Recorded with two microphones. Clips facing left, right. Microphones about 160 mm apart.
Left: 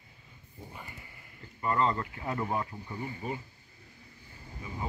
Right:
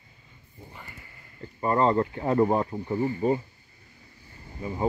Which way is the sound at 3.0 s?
35° right (ahead or behind).